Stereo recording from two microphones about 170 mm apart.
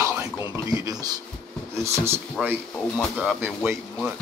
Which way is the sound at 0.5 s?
20° right (ahead or behind).